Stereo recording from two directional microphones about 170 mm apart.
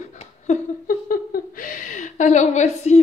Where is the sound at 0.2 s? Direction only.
45° left (ahead or behind).